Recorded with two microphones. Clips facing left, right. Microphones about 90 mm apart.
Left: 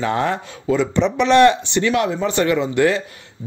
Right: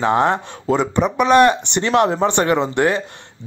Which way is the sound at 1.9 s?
40° right (ahead or behind).